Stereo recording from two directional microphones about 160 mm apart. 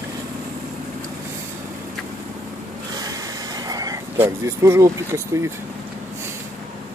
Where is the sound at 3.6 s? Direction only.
20° right (ahead or behind).